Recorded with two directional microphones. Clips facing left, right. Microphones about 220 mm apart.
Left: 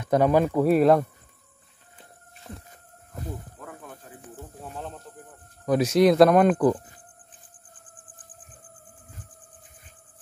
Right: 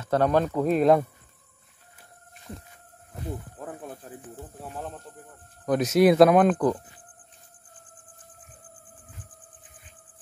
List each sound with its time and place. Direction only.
0.0 s speech: 10° left (ahead or behind)
2.4 s siren: 55° left (ahead or behind)
3.5 s snake: 35° right (ahead or behind)
4.7 s speech: 5° right (ahead or behind)